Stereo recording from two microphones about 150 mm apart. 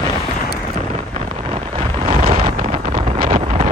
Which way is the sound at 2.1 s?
45° right (ahead or behind).